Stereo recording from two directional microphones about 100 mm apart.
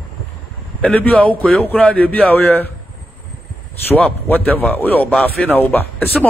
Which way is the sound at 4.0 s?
15° left (ahead or behind).